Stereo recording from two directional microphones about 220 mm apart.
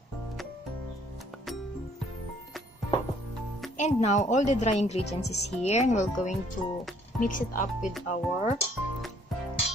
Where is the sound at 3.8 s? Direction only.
30° left (ahead or behind).